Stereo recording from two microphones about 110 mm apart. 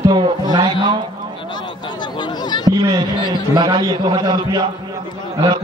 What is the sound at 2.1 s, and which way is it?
Chatter, 45° left (ahead or behind).